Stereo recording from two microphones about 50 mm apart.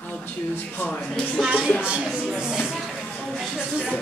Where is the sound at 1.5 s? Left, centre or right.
Right.